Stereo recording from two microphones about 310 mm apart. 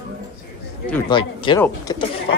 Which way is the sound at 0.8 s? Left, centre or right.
Centre.